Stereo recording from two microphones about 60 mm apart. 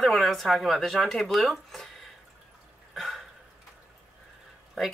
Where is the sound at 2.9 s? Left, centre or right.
Centre.